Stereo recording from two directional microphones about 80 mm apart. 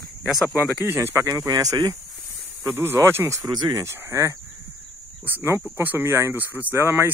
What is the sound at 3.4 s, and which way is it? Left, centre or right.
Speech, right.